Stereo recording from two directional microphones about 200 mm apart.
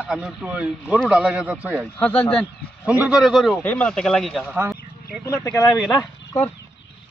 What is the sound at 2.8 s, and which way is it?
Speech, 5° right (ahead or behind).